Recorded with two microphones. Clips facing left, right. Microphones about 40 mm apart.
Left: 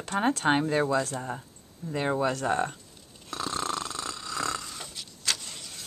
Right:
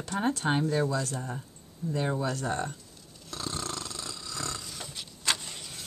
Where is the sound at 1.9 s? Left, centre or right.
Left.